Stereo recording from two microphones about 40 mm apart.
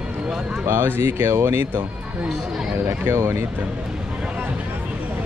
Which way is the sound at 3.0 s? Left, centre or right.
Right.